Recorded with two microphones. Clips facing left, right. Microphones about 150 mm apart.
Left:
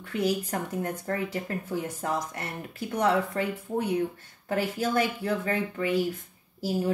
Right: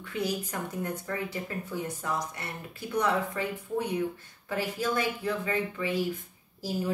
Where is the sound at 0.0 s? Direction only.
45° left (ahead or behind).